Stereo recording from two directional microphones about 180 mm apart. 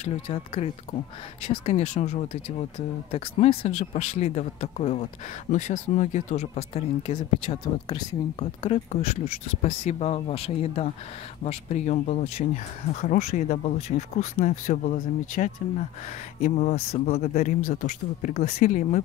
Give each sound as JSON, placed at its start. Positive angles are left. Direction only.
{"t": 0.0, "sound": "speech", "side_deg": 35}